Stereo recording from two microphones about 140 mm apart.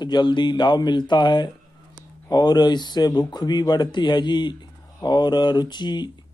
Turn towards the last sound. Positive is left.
turn(degrees=30)  # may be behind; listen again after turning